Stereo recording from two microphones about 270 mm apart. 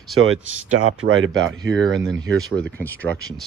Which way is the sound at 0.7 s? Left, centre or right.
Right.